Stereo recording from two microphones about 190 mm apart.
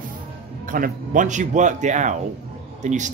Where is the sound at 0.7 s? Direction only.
45° right (ahead or behind).